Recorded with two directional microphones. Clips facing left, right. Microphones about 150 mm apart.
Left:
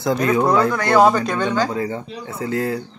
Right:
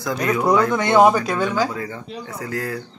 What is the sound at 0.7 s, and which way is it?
Speech, 20° right (ahead or behind).